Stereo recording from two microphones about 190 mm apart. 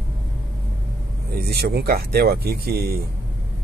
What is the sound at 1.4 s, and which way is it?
Speech, 55° right (ahead or behind).